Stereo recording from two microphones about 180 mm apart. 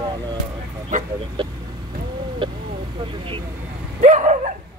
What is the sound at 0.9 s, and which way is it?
Speech, 45° right (ahead or behind).